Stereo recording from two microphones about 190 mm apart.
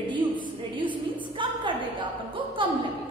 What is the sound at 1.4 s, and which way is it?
A woman's voice, 25° right (ahead or behind).